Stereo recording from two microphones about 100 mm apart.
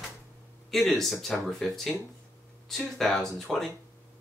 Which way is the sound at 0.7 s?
Centre (ahead or behind).